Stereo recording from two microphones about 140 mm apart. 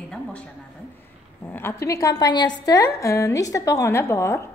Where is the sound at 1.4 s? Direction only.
15° left (ahead or behind).